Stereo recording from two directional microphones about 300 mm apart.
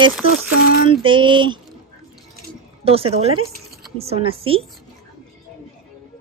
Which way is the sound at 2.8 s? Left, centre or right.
Centre.